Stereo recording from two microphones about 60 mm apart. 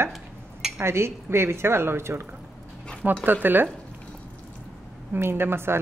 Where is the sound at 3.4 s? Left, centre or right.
Right.